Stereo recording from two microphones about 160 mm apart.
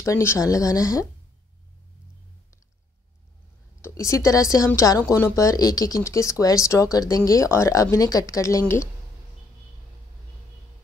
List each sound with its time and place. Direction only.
0.0 s speech: 15° left (ahead or behind)
3.8 s speech: 20° left (ahead or behind)